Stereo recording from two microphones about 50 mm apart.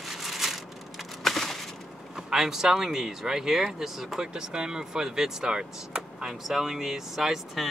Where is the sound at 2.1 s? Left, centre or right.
Centre.